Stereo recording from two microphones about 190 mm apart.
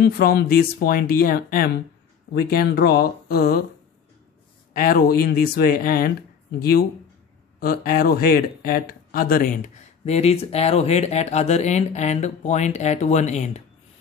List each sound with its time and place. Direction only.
0.0 s speech: 50° left (ahead or behind)
4.7 s speech: 50° left (ahead or behind)
7.6 s speech: 50° left (ahead or behind)